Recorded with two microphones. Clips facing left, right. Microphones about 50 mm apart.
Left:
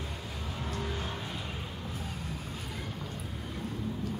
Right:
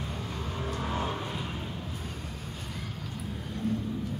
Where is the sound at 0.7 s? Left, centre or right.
Right.